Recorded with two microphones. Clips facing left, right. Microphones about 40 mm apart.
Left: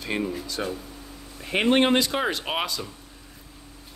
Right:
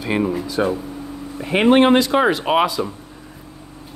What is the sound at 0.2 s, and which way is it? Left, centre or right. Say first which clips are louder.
Speech: right 8 dB; right.